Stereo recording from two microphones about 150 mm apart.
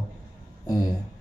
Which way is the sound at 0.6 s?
25° left (ahead or behind).